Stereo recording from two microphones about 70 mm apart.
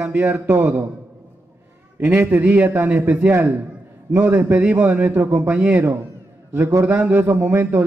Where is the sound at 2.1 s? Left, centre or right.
Right.